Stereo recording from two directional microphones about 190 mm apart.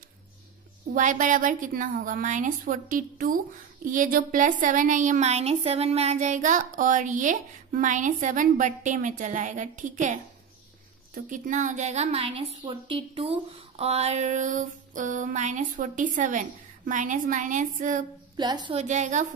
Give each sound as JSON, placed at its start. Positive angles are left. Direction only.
{"t": 0.9, "sound": "a woman's voice", "side_deg": -45}
{"t": 18.3, "sound": "a woman's voice", "side_deg": -20}
{"t": 18.8, "sound": "a woman's voice", "side_deg": -40}